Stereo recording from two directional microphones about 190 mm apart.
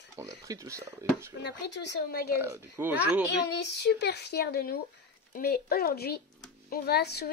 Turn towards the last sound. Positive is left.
turn(degrees=60)  # may be behind; listen again after turning